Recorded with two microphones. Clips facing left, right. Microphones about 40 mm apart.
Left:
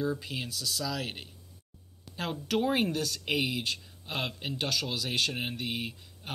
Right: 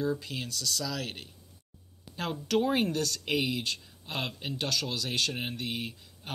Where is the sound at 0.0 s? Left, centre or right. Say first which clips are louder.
Right 1 dB; centre.